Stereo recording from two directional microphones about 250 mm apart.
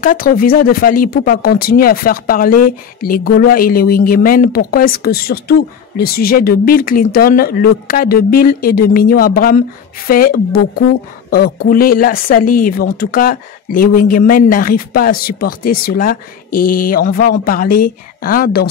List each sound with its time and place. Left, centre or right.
0.0 s speech: left